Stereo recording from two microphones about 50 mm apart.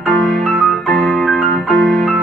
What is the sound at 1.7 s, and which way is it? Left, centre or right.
Keyboard, centre.